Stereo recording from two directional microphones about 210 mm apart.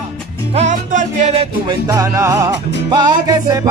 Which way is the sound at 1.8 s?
15° right (ahead or behind).